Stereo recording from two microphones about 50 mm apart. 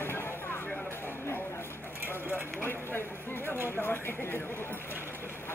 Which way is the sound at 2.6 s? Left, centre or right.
Left.